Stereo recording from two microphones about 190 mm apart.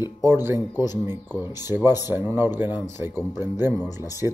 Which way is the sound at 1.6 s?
10° right (ahead or behind).